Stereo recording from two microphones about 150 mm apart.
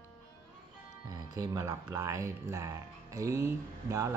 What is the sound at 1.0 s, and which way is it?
Speech, 25° right (ahead or behind).